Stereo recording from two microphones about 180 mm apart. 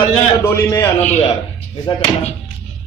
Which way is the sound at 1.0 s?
40° left (ahead or behind).